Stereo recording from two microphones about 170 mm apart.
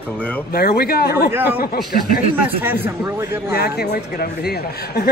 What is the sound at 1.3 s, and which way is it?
Speech, 10° right (ahead or behind).